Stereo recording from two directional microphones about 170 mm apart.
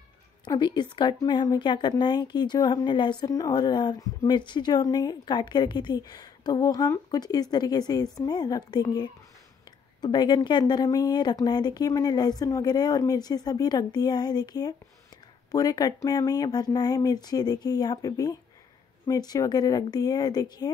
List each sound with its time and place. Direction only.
0.5 s a woman's voice: 25° left (ahead or behind)